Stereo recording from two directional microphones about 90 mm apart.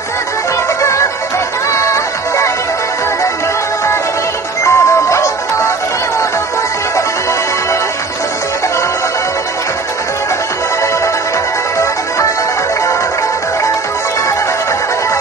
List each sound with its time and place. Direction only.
1.7 s music: 30° left (ahead or behind)
4.6 s music: 35° left (ahead or behind)